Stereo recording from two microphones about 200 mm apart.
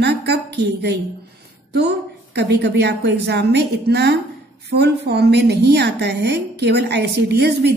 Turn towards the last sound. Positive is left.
turn(degrees=-55)  # may be behind; listen again after turning